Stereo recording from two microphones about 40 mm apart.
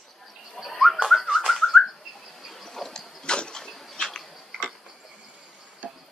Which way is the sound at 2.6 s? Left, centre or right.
Centre.